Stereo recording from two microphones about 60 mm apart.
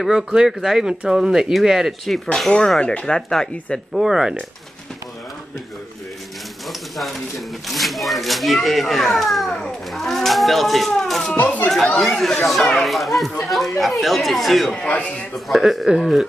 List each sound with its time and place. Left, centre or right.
0.0 s speech: centre
2.8 s speech: centre
3.2 s speech: centre
3.9 s speech: centre
7.0 s speech: centre
11.3 s speech: left
12.0 s speech: centre
14.8 s speech: left
15.3 s speech: centre